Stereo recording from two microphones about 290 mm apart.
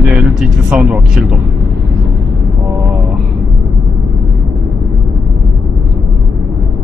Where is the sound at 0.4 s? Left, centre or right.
Centre.